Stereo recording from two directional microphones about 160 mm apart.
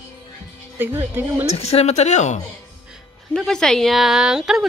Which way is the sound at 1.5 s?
40° left (ahead or behind).